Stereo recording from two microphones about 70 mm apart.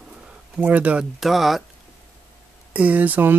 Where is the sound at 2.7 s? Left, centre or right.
Right.